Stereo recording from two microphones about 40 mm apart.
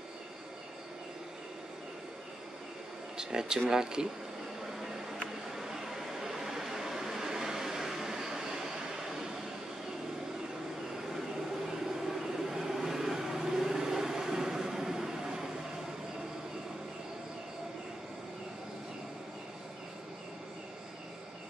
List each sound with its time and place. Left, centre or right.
3.2 s speech: centre
5.5 s vehicle: centre
11.6 s vehicle: centre